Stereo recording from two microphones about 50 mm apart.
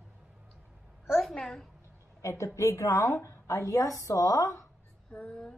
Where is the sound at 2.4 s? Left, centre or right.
Left.